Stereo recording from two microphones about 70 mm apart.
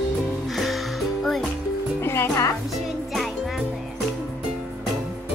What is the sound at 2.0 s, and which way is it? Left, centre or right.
Music, left.